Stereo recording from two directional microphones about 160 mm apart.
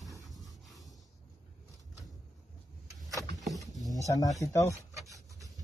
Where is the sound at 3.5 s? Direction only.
Centre (ahead or behind).